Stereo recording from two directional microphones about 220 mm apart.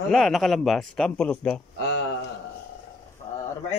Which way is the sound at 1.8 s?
50° left (ahead or behind).